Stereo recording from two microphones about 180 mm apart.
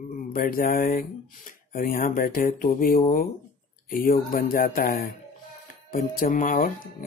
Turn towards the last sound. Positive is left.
turn(degrees=50)  # may be behind; listen again after turning